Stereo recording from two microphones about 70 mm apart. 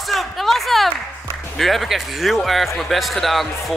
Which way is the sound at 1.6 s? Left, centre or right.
Centre.